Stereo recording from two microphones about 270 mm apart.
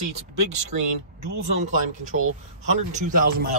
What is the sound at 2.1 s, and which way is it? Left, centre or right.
Speech, right.